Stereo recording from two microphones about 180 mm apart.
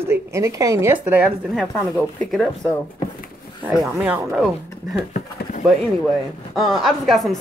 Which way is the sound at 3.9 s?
10° right (ahead or behind).